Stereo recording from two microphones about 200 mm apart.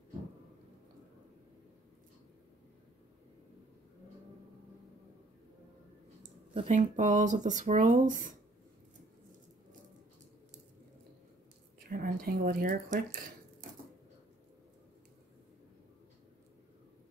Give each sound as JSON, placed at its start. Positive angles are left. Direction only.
{"t": 6.2, "sound": "speech", "side_deg": -35}
{"t": 11.9, "sound": "speech", "side_deg": -45}